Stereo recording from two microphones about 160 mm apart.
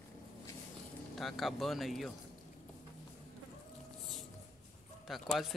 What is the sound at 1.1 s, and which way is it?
Speech, centre (ahead or behind).